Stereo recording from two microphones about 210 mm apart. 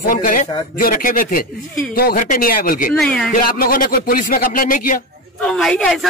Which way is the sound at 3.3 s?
45° left (ahead or behind).